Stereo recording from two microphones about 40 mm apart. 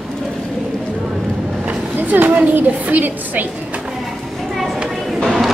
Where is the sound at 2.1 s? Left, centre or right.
Right.